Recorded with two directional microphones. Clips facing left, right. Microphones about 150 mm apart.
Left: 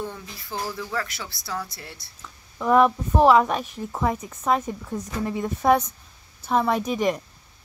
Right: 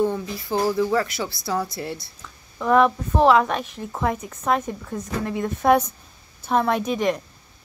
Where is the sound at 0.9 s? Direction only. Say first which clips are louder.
Right 8 dB; 25° right (ahead or behind).